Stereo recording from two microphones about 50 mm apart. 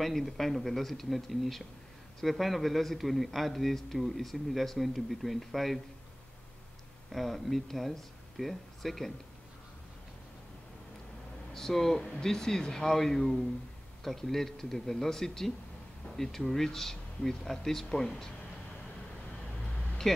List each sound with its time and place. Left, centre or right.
0.0 s a man's voice: centre
7.1 s speech: centre
11.5 s speech: centre